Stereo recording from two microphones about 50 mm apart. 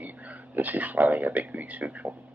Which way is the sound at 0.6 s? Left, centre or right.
Right.